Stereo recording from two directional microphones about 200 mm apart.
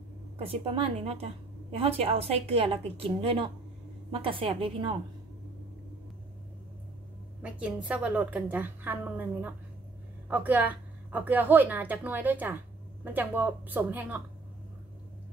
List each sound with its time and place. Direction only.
0.4 s a woman's voice: 30° right (ahead or behind)
7.4 s a woman's voice: 5° right (ahead or behind)